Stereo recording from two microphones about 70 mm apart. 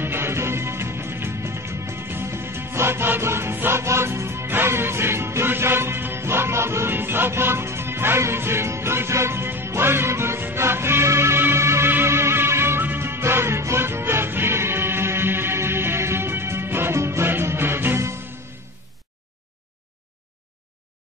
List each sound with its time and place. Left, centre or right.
0.0 s music: right